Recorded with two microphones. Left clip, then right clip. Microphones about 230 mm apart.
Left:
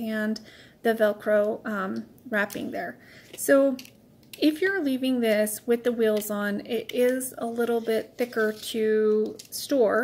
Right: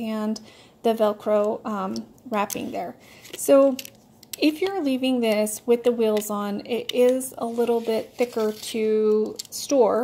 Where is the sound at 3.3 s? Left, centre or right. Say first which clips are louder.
Right 4 dB; right.